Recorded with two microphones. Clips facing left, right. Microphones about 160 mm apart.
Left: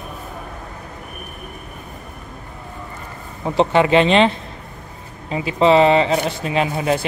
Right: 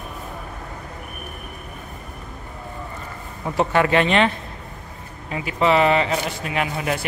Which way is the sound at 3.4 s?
25° left (ahead or behind).